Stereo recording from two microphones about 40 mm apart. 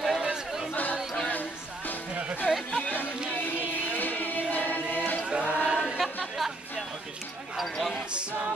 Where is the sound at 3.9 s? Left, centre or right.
Left.